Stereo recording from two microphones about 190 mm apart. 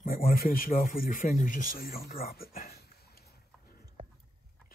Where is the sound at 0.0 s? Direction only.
50° left (ahead or behind).